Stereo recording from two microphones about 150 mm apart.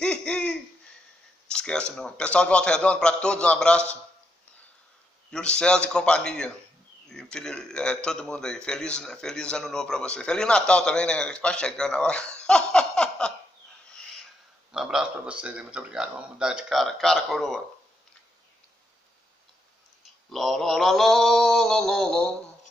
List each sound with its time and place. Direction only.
0.0 s laughter: 5° left (ahead or behind)
1.5 s a man's voice: 5° left (ahead or behind)
5.3 s a man's voice: 5° left (ahead or behind)
14.7 s a man's voice: 5° right (ahead or behind)
20.2 s a man's voice: centre (ahead or behind)